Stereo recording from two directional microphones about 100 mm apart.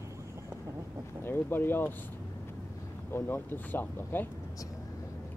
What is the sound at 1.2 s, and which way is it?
Speech, 20° left (ahead or behind).